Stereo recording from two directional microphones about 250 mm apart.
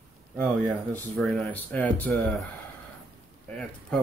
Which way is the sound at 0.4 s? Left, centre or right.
Centre.